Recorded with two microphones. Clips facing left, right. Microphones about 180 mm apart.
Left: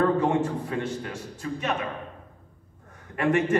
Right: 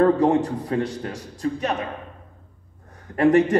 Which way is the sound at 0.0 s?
35° right (ahead or behind).